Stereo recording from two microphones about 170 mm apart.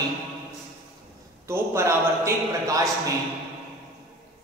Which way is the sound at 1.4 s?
15° right (ahead or behind).